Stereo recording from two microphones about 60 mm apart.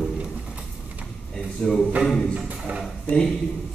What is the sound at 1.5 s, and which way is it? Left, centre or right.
Speech, centre.